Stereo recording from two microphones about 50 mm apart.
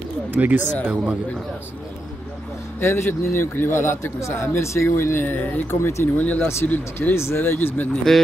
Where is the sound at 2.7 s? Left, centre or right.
Left.